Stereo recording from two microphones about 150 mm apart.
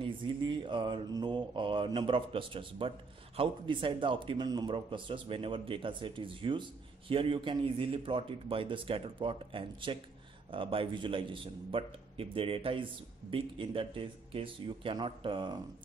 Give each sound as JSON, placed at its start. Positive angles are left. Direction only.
{"t": 0.0, "sound": "speech", "side_deg": -30}